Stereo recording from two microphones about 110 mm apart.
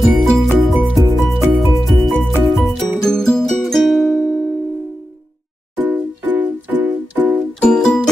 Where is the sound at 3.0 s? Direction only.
5° left (ahead or behind).